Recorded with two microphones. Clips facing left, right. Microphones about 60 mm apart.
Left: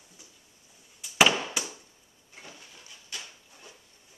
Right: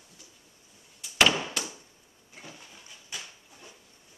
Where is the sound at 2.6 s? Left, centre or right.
Centre.